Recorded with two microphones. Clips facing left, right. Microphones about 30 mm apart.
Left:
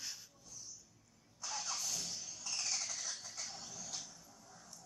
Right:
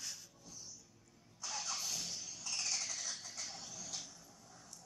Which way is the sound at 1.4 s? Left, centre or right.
Centre.